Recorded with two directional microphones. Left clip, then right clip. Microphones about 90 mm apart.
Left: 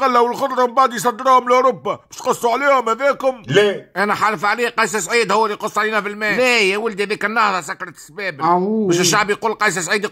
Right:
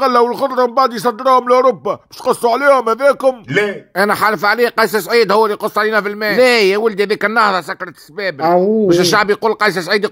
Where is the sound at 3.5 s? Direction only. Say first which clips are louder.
Left 1 dB; 20° left (ahead or behind).